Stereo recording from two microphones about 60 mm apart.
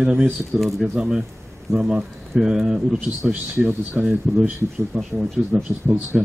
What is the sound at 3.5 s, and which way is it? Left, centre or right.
Speech, right.